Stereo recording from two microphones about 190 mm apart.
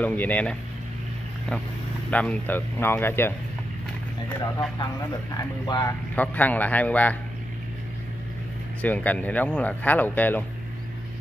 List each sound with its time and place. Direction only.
0.0 s speech: 10° left (ahead or behind)
2.0 s speech: 5° left (ahead or behind)
5.3 s speech: 20° left (ahead or behind)
6.1 s speech: 10° left (ahead or behind)
8.8 s speech: 10° left (ahead or behind)